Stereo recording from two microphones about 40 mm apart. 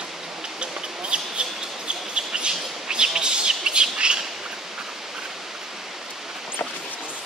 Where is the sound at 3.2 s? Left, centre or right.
Right.